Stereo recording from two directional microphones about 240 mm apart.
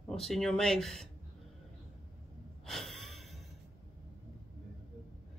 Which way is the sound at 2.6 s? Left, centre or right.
Centre.